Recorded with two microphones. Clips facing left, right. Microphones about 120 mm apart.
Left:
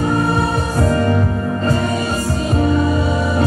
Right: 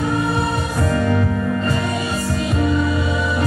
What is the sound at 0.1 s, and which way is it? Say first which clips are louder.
Music: left 3 dB; 40° left (ahead or behind).